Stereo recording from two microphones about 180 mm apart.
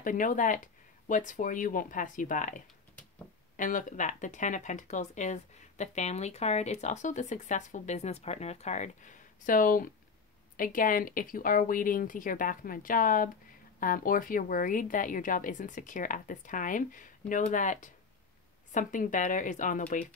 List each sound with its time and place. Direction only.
0.0 s speech: 45° left (ahead or behind)